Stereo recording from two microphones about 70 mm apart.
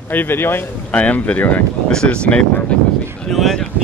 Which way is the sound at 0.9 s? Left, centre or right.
Centre.